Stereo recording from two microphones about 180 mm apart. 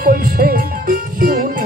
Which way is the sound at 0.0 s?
55° right (ahead or behind).